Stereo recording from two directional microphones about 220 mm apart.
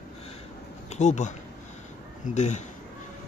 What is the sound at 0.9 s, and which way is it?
Speech, 30° left (ahead or behind).